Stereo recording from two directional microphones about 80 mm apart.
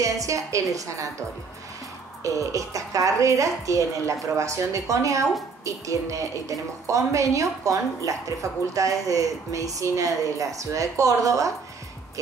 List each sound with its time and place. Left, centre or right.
0.0 s a woman's voice: right
2.2 s a woman's voice: right